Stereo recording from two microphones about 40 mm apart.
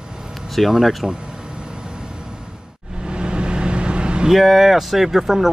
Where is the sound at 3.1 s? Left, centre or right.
Right.